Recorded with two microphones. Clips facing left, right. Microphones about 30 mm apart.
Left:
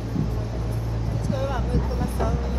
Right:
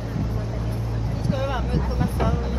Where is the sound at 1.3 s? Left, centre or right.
Centre.